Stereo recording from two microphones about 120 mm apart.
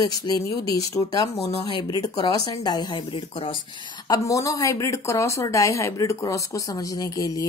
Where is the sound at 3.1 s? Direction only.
50° left (ahead or behind).